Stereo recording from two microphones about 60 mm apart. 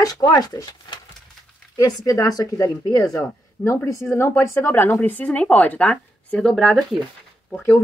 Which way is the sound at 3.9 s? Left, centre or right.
Left.